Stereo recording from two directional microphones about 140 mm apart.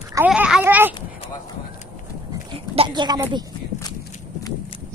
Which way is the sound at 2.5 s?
40° right (ahead or behind).